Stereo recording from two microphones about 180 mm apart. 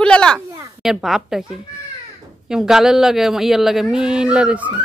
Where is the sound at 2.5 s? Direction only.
5° right (ahead or behind).